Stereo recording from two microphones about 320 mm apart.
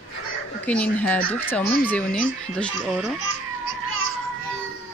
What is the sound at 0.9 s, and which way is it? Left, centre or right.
Speech, centre.